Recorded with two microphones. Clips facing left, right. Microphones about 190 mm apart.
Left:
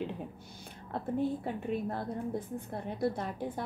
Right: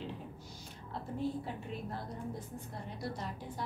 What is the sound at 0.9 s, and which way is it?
A woman's voice, 55° left (ahead or behind).